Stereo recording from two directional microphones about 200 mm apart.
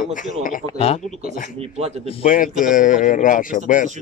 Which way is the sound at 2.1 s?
40° left (ahead or behind).